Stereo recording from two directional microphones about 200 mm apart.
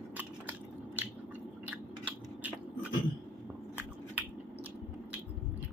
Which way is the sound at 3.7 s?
5° right (ahead or behind).